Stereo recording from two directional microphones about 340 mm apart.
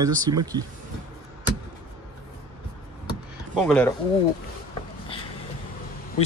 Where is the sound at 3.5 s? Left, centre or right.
Centre.